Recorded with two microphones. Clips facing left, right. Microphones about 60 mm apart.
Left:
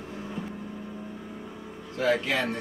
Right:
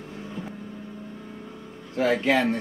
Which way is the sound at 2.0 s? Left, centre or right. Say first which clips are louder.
Right 4 dB; right.